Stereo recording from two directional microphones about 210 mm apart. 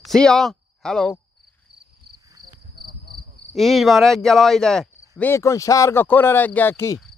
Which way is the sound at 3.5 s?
Centre (ahead or behind).